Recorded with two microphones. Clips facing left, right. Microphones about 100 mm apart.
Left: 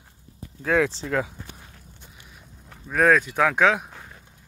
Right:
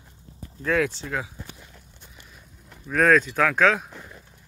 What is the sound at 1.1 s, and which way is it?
Speech, 50° left (ahead or behind).